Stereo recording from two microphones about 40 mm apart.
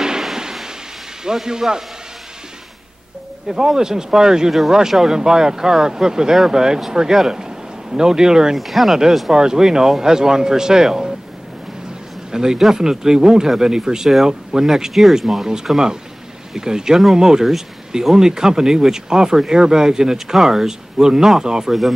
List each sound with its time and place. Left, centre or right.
0.4 s slam: centre
1.2 s speech: centre
3.4 s speech: centre
8.5 s speech: centre
9.3 s speech: centre
12.3 s speech: centre
16.5 s speech: centre